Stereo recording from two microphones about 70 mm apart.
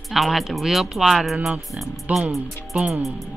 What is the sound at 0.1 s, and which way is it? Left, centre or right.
Speech, centre.